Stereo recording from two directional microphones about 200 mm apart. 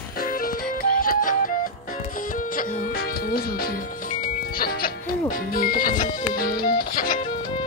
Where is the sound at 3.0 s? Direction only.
50° left (ahead or behind).